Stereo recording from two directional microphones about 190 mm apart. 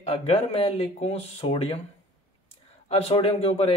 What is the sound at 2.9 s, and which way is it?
Speech, 30° left (ahead or behind).